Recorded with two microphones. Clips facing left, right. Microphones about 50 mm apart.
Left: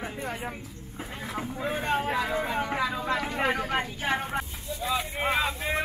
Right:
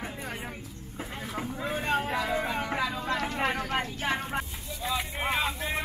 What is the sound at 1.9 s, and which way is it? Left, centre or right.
Vehicle, centre.